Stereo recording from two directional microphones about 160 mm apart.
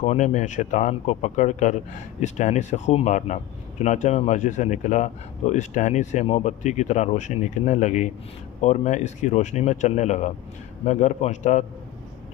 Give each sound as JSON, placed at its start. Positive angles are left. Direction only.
{"t": 0.0, "sound": "speech", "side_deg": 50}